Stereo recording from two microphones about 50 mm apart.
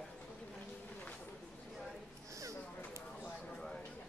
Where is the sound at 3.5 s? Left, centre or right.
Centre.